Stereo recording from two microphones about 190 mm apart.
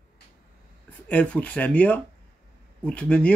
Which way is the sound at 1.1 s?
5° left (ahead or behind).